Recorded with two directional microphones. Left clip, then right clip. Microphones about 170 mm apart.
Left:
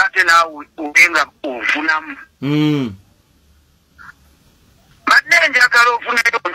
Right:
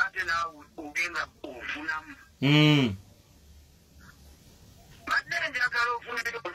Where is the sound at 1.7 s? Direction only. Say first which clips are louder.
Left 15 dB; 45° right (ahead or behind).